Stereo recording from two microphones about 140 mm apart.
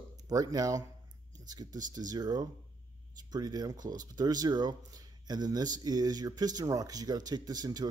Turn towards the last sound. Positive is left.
turn(degrees=-30)  # may be behind; listen again after turning